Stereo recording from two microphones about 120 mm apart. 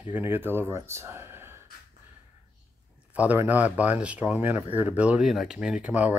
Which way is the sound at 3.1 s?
15° right (ahead or behind).